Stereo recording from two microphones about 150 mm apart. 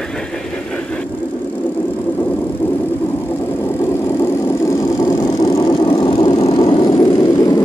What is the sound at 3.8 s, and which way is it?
Vehicle, 15° left (ahead or behind).